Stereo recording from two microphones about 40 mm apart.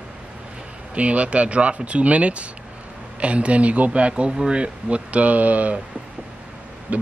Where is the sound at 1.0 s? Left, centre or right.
Right.